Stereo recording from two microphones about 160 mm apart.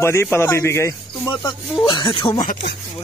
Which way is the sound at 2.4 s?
55° left (ahead or behind).